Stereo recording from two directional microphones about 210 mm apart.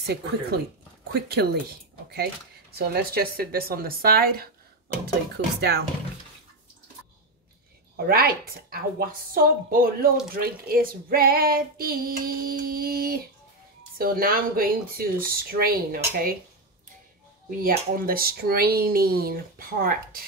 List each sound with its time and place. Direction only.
0.0 s child singing: 50° right (ahead or behind)
2.9 s child singing: 45° right (ahead or behind)
7.9 s child singing: 45° right (ahead or behind)
17.5 s child singing: 40° right (ahead or behind)